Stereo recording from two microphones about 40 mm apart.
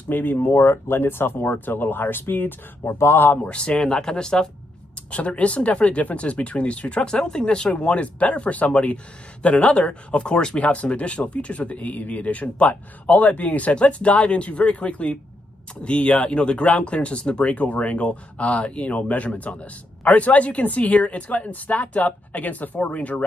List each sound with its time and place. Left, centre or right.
0.1 s speech: left
3.4 s speech: left
3.7 s speech: centre
5.1 s speech: left
7.1 s speech: left
10.3 s speech: centre
10.6 s speech: left